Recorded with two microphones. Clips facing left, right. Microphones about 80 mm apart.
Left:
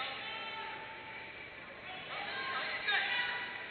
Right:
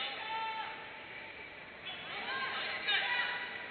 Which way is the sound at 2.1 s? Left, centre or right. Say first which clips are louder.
Right 1 dB; left.